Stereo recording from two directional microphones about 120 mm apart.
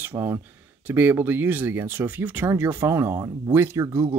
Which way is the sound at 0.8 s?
15° right (ahead or behind).